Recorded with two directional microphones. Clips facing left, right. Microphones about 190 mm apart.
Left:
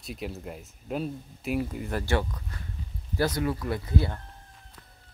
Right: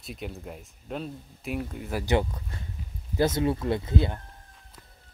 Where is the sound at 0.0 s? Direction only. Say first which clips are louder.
Left 1 dB; centre (ahead or behind).